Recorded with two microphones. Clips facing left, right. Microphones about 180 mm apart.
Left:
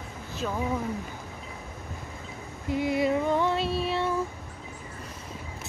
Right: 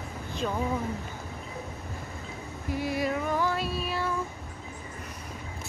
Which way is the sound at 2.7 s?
20° left (ahead or behind).